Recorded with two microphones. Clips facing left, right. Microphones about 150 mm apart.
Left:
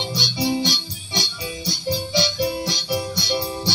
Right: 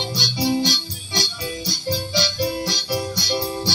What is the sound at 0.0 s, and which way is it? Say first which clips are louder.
Music: even; 20° left (ahead or behind).